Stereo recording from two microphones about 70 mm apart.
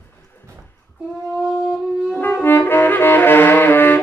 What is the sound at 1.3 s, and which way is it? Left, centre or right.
Wind instrument, centre.